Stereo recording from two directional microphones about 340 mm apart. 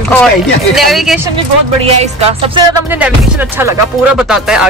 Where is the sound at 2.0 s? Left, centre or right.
Centre.